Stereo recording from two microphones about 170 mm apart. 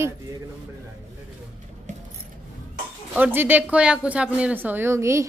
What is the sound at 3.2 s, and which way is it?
A woman's voice, 10° right (ahead or behind).